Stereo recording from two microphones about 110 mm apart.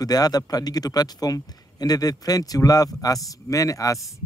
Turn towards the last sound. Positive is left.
turn(degrees=30)  # may be behind; listen again after turning